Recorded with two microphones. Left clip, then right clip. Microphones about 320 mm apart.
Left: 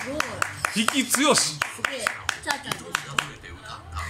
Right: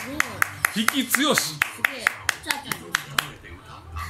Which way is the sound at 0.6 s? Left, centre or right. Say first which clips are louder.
Left 1 dB; centre.